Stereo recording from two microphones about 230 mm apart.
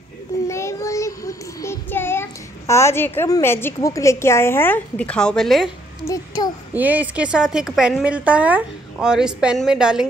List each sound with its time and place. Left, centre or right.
0.5 s child singing: centre
6.0 s a child's voice: centre
6.7 s a woman's voice: centre